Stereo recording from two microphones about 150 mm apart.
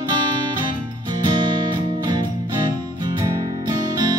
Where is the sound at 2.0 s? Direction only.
30° right (ahead or behind).